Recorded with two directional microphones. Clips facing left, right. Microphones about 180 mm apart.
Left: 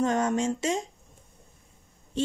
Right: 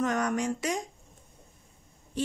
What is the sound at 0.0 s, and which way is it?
Speech, 25° left (ahead or behind).